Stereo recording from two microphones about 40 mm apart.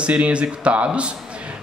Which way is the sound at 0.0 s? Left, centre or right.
Right.